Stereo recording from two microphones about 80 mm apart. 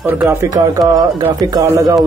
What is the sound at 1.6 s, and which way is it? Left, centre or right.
Speech, right.